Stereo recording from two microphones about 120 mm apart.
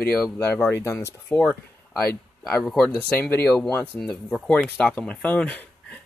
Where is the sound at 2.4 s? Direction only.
10° left (ahead or behind).